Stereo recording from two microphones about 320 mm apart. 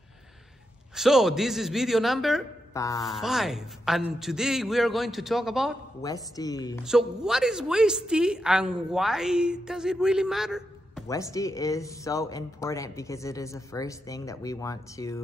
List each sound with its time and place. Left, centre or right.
0.9 s a woman's voice: centre
2.7 s speech: centre
3.1 s a woman's voice: centre
6.0 s speech: centre
6.8 s a woman's voice: centre
11.1 s speech: centre